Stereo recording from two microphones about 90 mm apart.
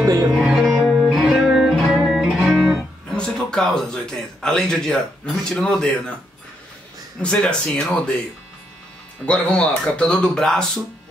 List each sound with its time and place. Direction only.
0.0 s music: 40° right (ahead or behind)
0.3 s music: centre (ahead or behind)
3.2 s a man's voice: 5° left (ahead or behind)
7.2 s speech: 10° left (ahead or behind)
9.2 s speech: 10° left (ahead or behind)